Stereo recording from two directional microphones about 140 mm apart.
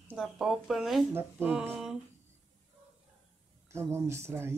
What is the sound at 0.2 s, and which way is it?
A woman's voice, centre (ahead or behind).